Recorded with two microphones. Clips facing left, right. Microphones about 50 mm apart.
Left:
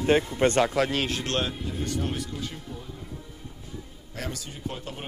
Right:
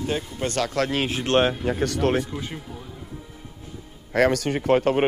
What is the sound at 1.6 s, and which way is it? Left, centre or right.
Speech, right.